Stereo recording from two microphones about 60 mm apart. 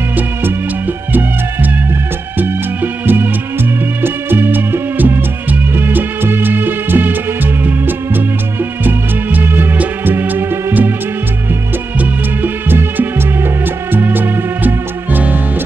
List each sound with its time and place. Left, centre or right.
2.3 s music: right
12.0 s music: right